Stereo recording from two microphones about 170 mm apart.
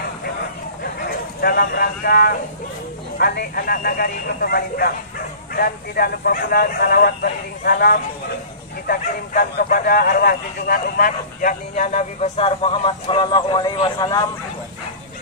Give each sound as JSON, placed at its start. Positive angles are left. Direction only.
{"t": 1.0, "sound": "a man's voice", "side_deg": 60}